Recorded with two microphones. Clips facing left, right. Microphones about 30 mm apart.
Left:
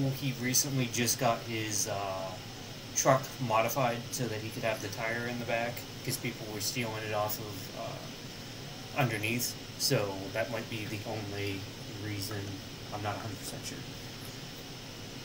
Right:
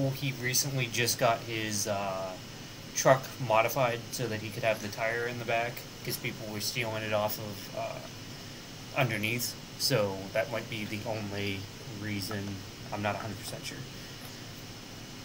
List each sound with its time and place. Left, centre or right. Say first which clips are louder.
0.0 s speech: right 1 dB; centre
10.0 s speech: right 3 dB; centre
12.9 s speech: right 5 dB; right